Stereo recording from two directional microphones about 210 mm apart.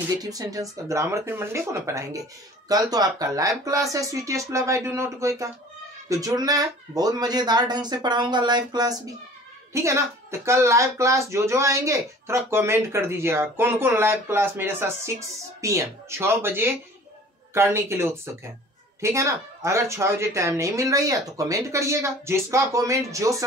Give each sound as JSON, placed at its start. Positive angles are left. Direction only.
{"t": 0.2, "sound": "a woman's voice", "side_deg": -15}